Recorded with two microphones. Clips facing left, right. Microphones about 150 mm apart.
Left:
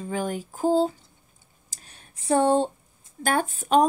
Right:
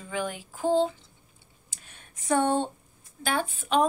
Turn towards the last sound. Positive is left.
turn(degrees=40)  # may be behind; listen again after turning